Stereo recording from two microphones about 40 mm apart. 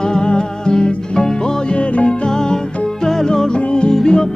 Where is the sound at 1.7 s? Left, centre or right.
Left.